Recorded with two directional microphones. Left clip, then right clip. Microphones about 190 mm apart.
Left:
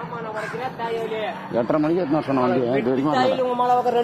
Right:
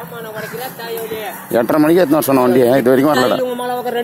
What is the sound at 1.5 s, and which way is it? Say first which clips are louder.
Speech: right 9 dB; 40° right (ahead or behind).